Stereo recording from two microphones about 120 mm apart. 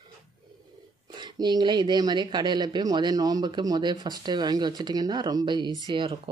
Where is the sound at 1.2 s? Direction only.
35° right (ahead or behind).